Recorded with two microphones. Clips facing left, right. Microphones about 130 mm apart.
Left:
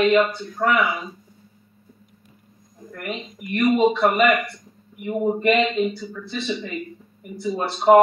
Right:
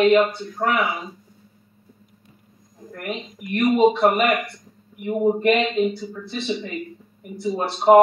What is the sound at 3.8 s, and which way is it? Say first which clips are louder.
Speech: even; 20° right (ahead or behind).